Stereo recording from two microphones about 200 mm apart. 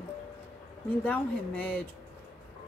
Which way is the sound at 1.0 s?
5° left (ahead or behind).